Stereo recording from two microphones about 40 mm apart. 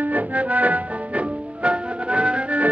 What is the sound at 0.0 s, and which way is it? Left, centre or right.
Music, right.